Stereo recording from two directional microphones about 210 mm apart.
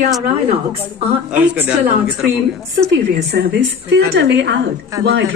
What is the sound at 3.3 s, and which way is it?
Speech, 55° right (ahead or behind).